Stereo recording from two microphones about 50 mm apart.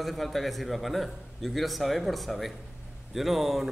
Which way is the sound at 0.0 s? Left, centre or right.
Centre.